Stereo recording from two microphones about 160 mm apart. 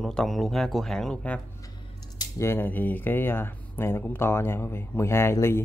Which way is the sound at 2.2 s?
15° left (ahead or behind).